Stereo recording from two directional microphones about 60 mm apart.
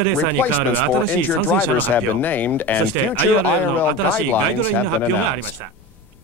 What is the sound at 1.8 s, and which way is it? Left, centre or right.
Speech, left.